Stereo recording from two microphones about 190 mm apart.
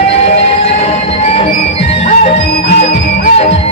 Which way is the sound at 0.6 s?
30° left (ahead or behind).